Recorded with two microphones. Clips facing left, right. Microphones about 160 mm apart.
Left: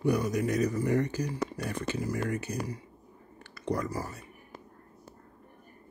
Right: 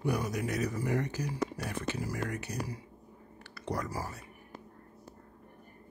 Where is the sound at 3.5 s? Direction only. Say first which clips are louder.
Left 4 dB; centre (ahead or behind).